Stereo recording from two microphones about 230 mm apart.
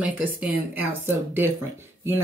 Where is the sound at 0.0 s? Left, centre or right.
Centre.